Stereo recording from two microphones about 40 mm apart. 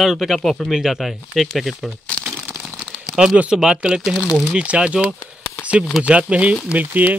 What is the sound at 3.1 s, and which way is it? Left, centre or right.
Speech, centre.